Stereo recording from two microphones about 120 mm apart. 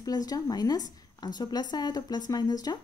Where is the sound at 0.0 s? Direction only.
30° left (ahead or behind).